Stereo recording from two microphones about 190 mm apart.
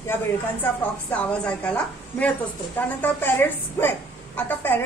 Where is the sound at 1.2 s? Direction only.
5° left (ahead or behind).